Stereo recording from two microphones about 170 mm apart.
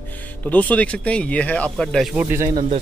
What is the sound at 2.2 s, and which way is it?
Speech, 15° right (ahead or behind).